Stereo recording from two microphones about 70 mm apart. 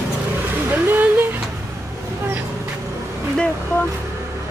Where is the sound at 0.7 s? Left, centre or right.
Right.